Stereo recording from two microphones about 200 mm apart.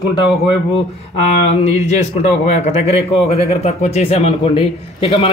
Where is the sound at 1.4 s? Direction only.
30° left (ahead or behind).